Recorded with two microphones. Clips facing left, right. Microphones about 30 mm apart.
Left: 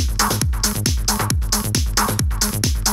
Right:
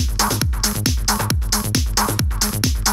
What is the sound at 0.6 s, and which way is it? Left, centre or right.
Music, centre.